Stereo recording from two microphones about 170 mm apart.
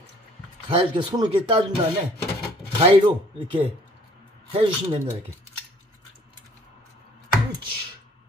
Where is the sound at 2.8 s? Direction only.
30° right (ahead or behind).